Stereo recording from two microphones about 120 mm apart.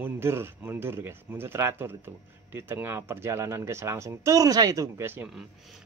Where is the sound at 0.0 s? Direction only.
20° right (ahead or behind).